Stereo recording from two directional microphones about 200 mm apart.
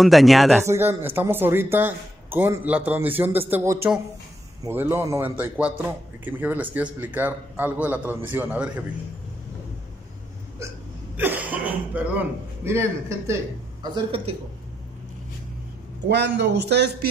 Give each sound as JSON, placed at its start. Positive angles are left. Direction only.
{"t": 0.0, "sound": "speech", "side_deg": 0}
{"t": 0.7, "sound": "speech", "side_deg": -10}
{"t": 11.1, "sound": "speech", "side_deg": -10}
{"t": 13.9, "sound": "a man's voice", "side_deg": -25}
{"t": 16.1, "sound": "a man's voice", "side_deg": -60}